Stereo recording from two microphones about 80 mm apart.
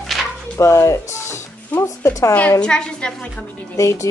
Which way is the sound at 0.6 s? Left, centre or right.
Left.